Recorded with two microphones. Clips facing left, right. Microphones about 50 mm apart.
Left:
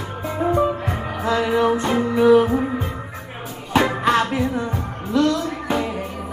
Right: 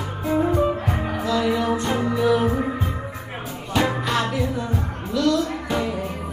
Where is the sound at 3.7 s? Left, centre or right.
Left.